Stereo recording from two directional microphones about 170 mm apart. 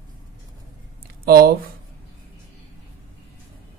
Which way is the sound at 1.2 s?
65° right (ahead or behind).